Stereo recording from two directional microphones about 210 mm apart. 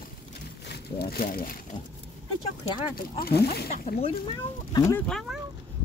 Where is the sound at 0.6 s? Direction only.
50° left (ahead or behind).